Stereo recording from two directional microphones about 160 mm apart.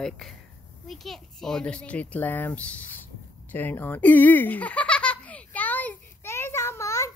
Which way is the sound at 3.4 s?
10° left (ahead or behind).